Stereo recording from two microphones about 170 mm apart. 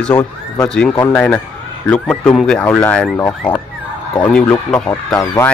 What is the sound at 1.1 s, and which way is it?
Speech, 5° left (ahead or behind).